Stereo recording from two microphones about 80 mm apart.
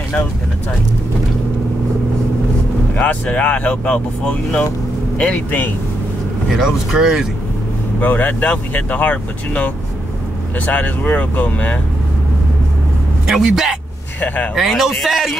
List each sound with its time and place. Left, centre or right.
3.0 s speech: centre
6.5 s speech: centre
8.0 s speech: left
10.7 s speech: left
13.3 s speech: centre
14.2 s speech: left
14.5 s speech: centre